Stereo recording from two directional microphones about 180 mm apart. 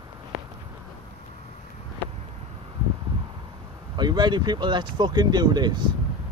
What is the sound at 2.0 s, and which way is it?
Vehicle, 10° left (ahead or behind).